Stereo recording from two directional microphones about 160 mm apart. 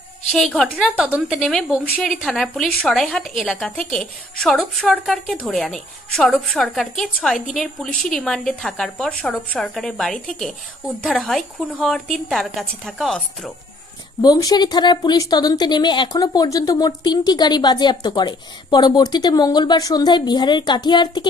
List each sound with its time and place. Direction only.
0.3 s a woman's voice: 5° left (ahead or behind)
0.7 s a woman's voice: 5° right (ahead or behind)
14.2 s a woman's voice: 25° left (ahead or behind)